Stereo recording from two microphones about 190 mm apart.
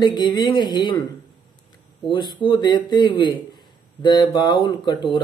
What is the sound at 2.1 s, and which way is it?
Speech, 25° left (ahead or behind).